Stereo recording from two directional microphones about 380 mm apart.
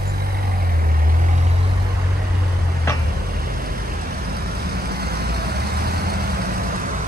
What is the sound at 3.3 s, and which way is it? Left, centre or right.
Vehicle, right.